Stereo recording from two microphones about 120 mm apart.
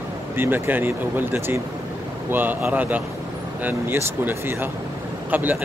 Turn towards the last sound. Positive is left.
turn(degrees=-15)  # may be behind; listen again after turning